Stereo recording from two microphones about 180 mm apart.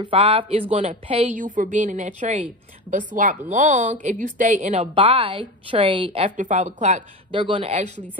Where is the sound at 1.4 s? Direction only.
45° right (ahead or behind).